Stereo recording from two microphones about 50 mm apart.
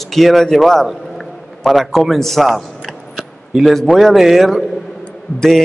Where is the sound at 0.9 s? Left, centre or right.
Centre.